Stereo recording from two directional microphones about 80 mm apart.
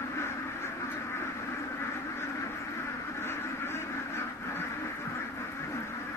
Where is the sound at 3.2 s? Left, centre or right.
Left.